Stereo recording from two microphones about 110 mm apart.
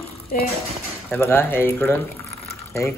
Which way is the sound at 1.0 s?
20° left (ahead or behind).